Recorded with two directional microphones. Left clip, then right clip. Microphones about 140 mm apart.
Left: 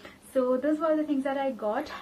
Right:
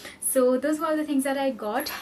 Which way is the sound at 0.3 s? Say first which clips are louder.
Right 4 dB; 20° right (ahead or behind).